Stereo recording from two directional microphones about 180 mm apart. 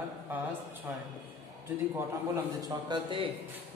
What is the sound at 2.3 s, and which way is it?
Speech, 10° right (ahead or behind).